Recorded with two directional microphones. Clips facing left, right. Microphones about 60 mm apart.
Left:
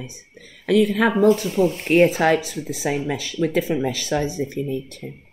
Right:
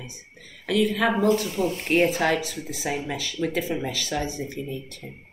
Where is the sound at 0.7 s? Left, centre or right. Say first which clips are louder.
Left 5 dB; left.